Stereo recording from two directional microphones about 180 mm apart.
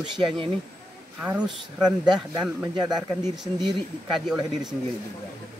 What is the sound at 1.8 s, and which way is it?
A man's voice, 25° right (ahead or behind).